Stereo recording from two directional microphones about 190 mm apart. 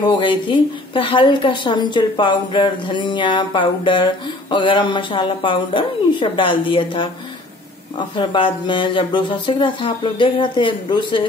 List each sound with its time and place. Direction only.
0.0 s a woman's voice: 25° left (ahead or behind)
8.2 s a woman's voice: 25° left (ahead or behind)